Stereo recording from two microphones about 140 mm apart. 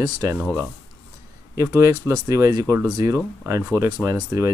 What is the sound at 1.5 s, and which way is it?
Speech, 25° right (ahead or behind).